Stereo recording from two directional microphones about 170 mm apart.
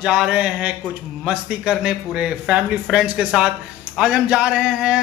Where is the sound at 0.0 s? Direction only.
5° right (ahead or behind).